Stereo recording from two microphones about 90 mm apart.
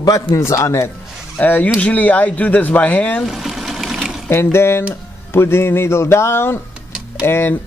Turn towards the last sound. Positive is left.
turn(degrees=25)  # may be behind; listen again after turning